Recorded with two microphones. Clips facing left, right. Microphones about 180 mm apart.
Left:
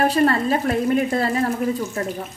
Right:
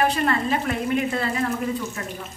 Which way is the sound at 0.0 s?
40° left (ahead or behind).